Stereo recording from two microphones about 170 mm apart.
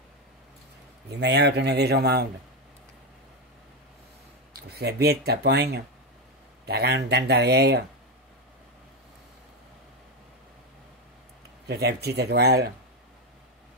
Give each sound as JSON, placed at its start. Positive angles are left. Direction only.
{"t": 1.0, "sound": "speech", "side_deg": -80}
{"t": 4.6, "sound": "speech", "side_deg": -70}
{"t": 11.6, "sound": "speech", "side_deg": -70}